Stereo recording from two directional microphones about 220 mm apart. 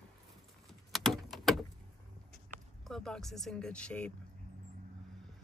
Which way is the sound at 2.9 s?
5° left (ahead or behind).